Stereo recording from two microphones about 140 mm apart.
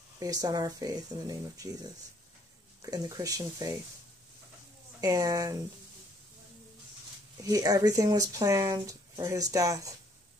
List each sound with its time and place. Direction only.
0.2 s speech: 25° right (ahead or behind)
5.0 s speech: 25° right (ahead or behind)
7.4 s speech: 25° right (ahead or behind)